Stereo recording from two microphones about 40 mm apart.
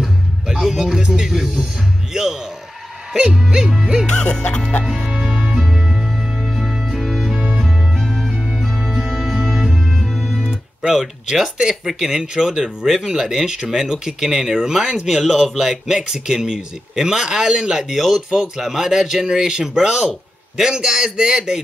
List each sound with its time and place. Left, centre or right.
0.6 s music: centre
1.0 s speech: centre
1.3 s speech: centre
4.1 s music: left
4.8 s music: centre
11.3 s speech: centre